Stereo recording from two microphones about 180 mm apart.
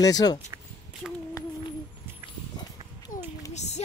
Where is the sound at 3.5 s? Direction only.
40° left (ahead or behind).